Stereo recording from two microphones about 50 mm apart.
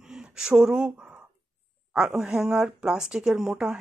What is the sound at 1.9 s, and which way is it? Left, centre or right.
Speech, centre.